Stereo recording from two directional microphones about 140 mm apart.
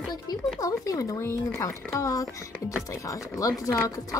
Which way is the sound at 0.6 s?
25° left (ahead or behind).